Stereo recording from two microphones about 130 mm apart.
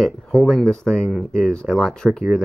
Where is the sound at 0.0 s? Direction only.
5° left (ahead or behind).